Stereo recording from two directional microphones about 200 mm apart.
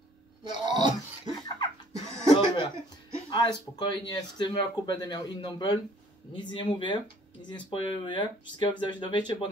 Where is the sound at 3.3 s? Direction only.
20° left (ahead or behind).